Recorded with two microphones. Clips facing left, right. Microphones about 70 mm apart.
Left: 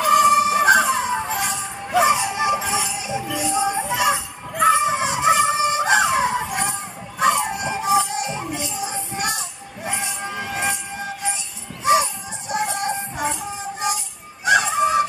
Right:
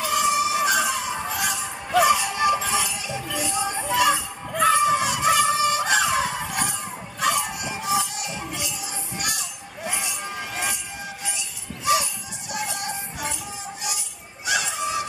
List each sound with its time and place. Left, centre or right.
0.0 s music: left
3.3 s a sound: left
8.5 s music: left